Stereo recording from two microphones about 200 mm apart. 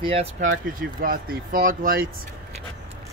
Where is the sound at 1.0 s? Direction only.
45° right (ahead or behind).